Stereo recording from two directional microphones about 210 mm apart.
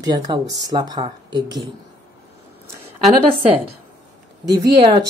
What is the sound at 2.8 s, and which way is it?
Speech, 5° right (ahead or behind).